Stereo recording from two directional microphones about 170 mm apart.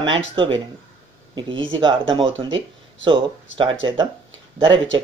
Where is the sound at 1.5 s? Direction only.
90° right.